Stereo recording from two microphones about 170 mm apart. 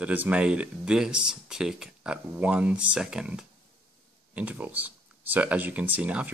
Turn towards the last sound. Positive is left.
turn(degrees=-10)  # may be behind; listen again after turning